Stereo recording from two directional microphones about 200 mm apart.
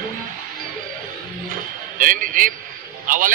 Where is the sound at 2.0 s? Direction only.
40° right (ahead or behind).